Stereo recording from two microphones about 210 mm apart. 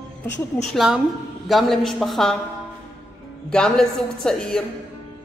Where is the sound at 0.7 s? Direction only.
5° right (ahead or behind).